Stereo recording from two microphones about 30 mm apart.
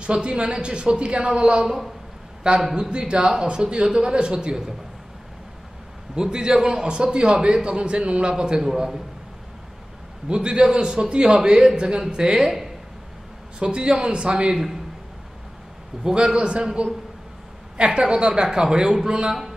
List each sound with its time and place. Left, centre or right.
0.0 s a woman's voice: right
2.7 s a man's voice: right
6.1 s a man's voice: right
10.2 s a man's voice: right
13.6 s a woman's voice: right
15.9 s a man's voice: centre
16.3 s a woman's voice: right